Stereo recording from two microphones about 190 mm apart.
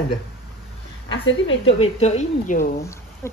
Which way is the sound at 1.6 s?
30° left (ahead or behind).